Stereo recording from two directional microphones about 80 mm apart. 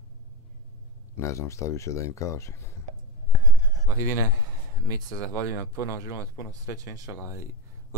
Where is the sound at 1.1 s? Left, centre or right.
Left.